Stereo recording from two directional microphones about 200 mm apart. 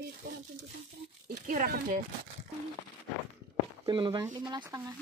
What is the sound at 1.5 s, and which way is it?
Speech, 40° right (ahead or behind).